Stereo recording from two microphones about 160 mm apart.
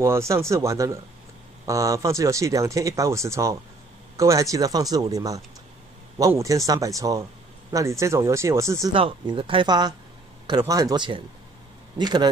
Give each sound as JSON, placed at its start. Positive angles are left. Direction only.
{"t": 0.0, "sound": "speech", "side_deg": -15}
{"t": 8.9, "sound": "speech", "side_deg": -30}